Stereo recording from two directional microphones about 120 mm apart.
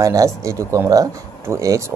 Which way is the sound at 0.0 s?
25° right (ahead or behind).